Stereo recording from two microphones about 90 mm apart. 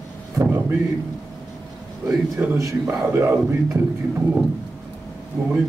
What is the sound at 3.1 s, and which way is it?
Speech, 25° right (ahead or behind).